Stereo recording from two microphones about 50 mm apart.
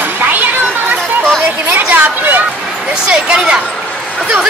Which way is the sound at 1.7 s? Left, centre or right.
Right.